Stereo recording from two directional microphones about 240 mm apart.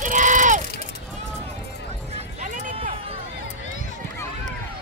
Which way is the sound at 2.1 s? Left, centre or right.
Right.